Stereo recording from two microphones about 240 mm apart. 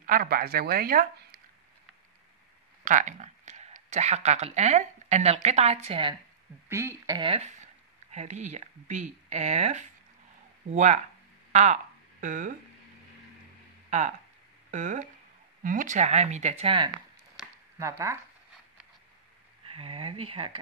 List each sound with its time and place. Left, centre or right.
0.0 s speech: right
2.8 s speech: right
6.7 s speech: centre; by 12.5 s right
13.8 s speech: right
17.4 s a sound: centre
19.6 s speech: right